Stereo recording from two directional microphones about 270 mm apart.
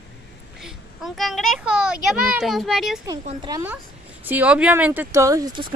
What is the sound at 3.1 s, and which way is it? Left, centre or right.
Speech, centre.